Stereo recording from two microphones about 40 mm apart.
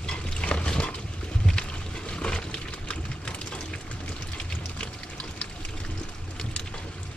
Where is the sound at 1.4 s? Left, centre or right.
Centre.